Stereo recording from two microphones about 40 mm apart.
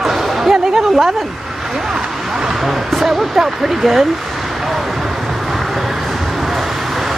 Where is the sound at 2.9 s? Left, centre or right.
Centre.